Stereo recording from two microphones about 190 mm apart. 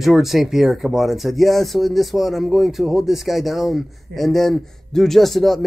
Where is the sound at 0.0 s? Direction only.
Centre (ahead or behind).